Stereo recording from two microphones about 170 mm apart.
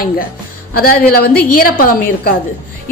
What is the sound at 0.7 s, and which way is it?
A woman's voice, 60° left (ahead or behind).